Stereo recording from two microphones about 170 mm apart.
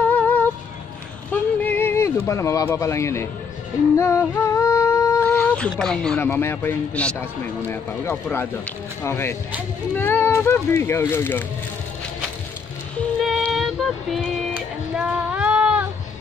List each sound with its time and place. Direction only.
0.1 s music: 10° left (ahead or behind)
1.3 s a sound: 10° left (ahead or behind)
4.0 s music: 15° left (ahead or behind)
5.2 s speech: 5° left (ahead or behind)
13.2 s music: centre (ahead or behind)